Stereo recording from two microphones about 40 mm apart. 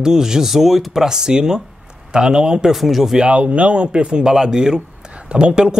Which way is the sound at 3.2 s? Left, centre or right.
Right.